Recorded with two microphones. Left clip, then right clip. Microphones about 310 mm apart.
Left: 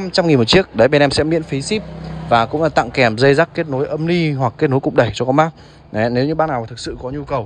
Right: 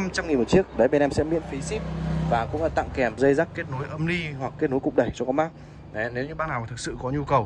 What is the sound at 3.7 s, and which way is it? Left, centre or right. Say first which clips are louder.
Speech: left 11 dB; centre.